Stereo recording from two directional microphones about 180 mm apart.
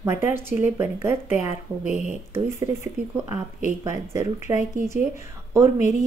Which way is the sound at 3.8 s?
15° right (ahead or behind).